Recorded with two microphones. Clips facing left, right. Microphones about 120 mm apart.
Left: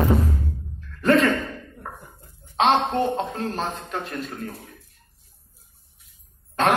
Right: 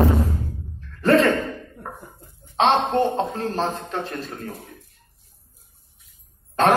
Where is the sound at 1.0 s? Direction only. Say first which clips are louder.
Right 2 dB; 30° right (ahead or behind).